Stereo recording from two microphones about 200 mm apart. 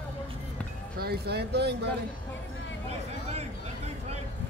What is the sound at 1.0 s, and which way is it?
Speech, 50° right (ahead or behind).